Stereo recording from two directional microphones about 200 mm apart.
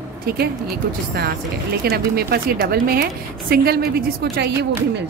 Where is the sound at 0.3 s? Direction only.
50° right (ahead or behind).